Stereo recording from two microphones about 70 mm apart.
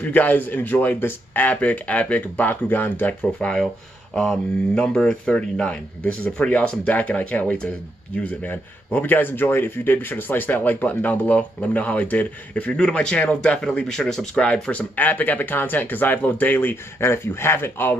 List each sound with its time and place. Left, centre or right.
0.0 s speech: left
3.3 s speech: centre
17.0 s speech: left